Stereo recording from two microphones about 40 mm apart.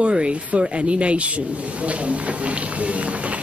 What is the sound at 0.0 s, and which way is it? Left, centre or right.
A man's voice, right.